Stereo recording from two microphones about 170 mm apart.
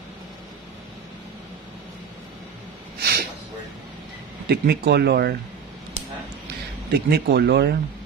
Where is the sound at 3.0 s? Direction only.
70° right (ahead or behind).